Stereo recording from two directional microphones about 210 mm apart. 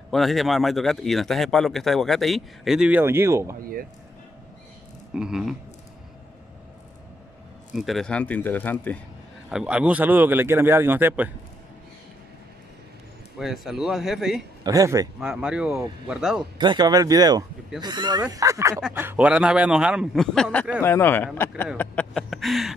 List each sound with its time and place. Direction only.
0.1 s speech: centre (ahead or behind)
5.1 s speech: 5° right (ahead or behind)
7.7 s speech: centre (ahead or behind)
9.5 s a man's voice: 5° right (ahead or behind)
13.4 s speech: centre (ahead or behind)
14.6 s a man's voice: 15° right (ahead or behind)
15.1 s speech: 5° right (ahead or behind)
16.5 s a man's voice: 20° right (ahead or behind); by 20.8 s 5° right (ahead or behind)
20.8 s speech: 10° left (ahead or behind)